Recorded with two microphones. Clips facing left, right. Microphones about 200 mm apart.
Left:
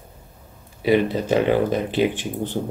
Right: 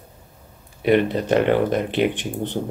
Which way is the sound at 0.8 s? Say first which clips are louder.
Right 1 dB; 5° left (ahead or behind).